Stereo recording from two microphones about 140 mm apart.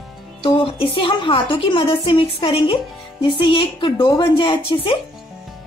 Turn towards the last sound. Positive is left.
turn(degrees=40)  # may be behind; listen again after turning